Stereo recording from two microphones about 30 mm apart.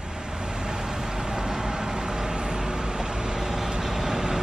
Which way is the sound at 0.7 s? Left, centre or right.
Right.